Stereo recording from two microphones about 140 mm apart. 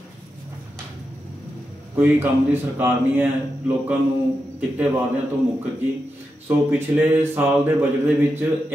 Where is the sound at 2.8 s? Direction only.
15° right (ahead or behind).